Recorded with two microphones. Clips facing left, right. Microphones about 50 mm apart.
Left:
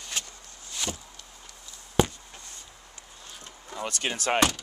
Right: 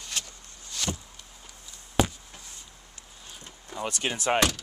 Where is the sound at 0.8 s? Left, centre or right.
Centre.